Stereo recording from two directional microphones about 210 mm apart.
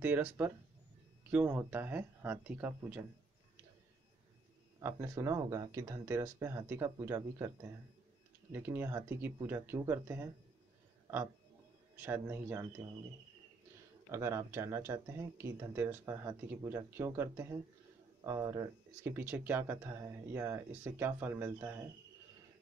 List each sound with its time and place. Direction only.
0.0 s speech: 10° right (ahead or behind)
4.7 s speech: 15° right (ahead or behind)
12.0 s speech: 10° right (ahead or behind)
14.1 s speech: 15° right (ahead or behind)